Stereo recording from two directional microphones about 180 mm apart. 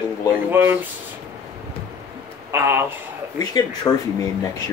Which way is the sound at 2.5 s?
15° right (ahead or behind).